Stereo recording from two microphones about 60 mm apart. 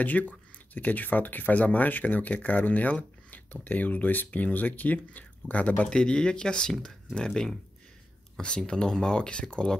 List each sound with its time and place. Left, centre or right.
0.0 s speech: left
5.9 s speech: centre